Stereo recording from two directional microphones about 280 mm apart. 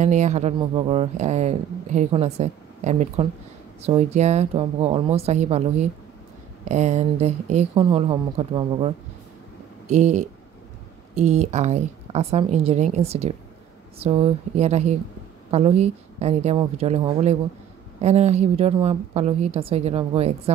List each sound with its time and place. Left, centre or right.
0.0 s speech: right